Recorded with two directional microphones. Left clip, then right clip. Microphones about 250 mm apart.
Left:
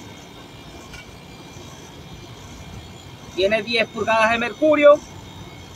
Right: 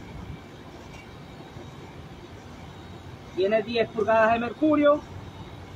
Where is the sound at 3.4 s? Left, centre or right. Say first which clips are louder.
Left 4 dB; left.